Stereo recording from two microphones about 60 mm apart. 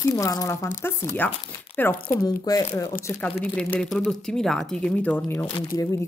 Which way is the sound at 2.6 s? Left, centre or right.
Left.